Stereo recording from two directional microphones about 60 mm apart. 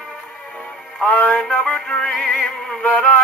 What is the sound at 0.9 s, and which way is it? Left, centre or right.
Music, left.